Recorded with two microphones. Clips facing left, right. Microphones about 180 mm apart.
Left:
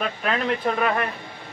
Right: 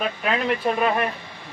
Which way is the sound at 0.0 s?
10° right (ahead or behind).